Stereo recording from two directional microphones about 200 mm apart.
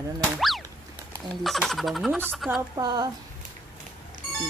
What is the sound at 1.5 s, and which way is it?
Speech, centre (ahead or behind).